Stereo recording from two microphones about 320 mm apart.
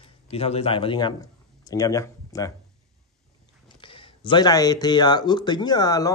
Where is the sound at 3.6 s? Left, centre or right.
Centre.